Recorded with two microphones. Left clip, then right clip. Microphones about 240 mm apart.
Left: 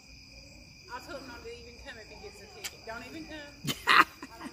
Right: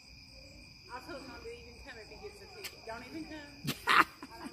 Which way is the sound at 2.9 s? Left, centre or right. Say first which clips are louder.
Even; left.